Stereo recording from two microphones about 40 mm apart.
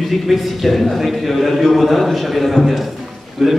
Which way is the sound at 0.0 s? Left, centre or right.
Centre.